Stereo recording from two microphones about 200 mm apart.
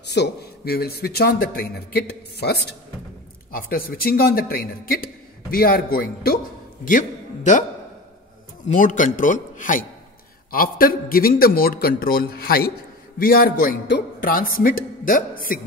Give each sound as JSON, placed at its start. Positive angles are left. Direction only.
{"t": 0.0, "sound": "a man's voice", "side_deg": 55}
{"t": 8.6, "sound": "a man's voice", "side_deg": 40}